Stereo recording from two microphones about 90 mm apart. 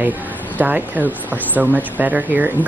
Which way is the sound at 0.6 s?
20° right (ahead or behind).